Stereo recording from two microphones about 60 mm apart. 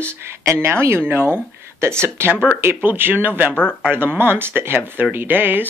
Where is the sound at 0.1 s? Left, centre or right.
Right.